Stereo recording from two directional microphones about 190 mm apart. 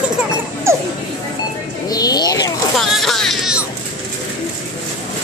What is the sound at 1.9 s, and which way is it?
Bird, 20° left (ahead or behind).